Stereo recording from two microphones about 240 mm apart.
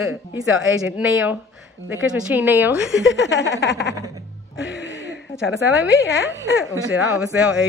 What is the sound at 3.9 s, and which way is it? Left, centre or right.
Music, centre.